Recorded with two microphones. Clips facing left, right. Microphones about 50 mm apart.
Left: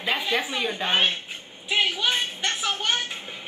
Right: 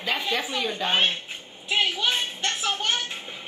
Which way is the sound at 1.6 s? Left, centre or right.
Centre.